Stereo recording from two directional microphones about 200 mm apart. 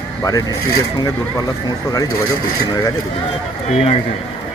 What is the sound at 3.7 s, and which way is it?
Speech, 30° left (ahead or behind).